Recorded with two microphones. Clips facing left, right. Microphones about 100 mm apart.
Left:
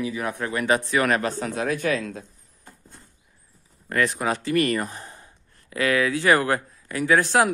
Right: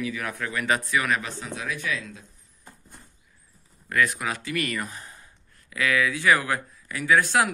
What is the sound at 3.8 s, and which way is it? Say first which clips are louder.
Speech: left 2 dB; 35° left (ahead or behind).